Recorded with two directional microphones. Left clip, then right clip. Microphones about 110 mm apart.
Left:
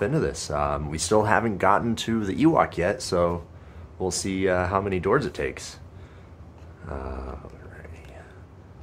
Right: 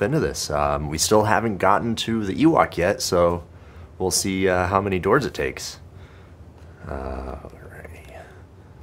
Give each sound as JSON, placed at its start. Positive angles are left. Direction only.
{"t": 0.0, "sound": "speech", "side_deg": -40}
{"t": 2.5, "sound": "speech", "side_deg": -40}
{"t": 6.9, "sound": "speech", "side_deg": -35}